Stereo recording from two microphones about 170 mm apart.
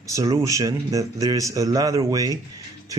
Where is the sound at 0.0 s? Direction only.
20° right (ahead or behind).